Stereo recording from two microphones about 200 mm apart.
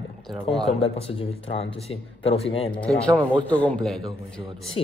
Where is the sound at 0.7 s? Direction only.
30° left (ahead or behind).